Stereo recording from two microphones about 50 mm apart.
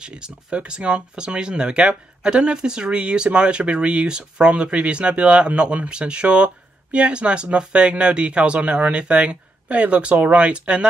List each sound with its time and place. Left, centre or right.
0.0 s speech: centre